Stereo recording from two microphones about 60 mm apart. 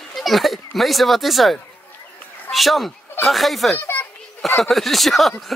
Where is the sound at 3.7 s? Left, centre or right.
Left.